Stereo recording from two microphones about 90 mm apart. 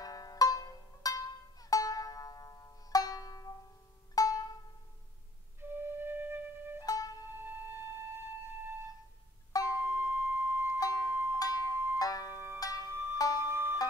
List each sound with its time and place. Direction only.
0.0 s music: 45° left (ahead or behind)
5.6 s flute: 25° right (ahead or behind)
6.8 s music: 45° left (ahead or behind)
7.3 s music: 25° right (ahead or behind)
9.8 s music: 25° right (ahead or behind)
11.3 s zither: 40° left (ahead or behind)
11.6 s music: 25° right (ahead or behind)
12.0 s music: 45° left (ahead or behind)
12.9 s music: 25° right (ahead or behind)